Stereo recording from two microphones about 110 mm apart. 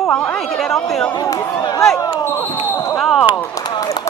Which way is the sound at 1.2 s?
35° left (ahead or behind).